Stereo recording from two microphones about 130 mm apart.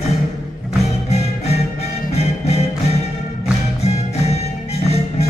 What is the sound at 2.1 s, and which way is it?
Music, 55° left (ahead or behind).